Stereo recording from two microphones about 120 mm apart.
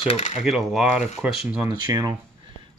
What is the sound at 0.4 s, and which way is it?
Speech, centre (ahead or behind).